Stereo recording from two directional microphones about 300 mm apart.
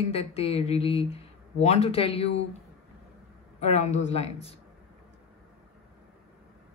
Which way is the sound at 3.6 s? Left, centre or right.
Left.